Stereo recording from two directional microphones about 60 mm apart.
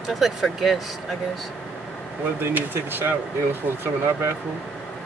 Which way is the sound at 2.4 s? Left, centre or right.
Right.